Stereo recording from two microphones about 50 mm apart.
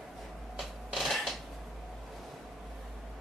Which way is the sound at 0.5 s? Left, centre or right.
Centre.